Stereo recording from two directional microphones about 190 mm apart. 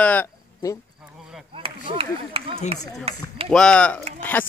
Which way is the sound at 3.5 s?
5° left (ahead or behind).